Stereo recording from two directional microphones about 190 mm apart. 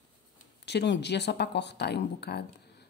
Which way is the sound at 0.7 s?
65° left (ahead or behind).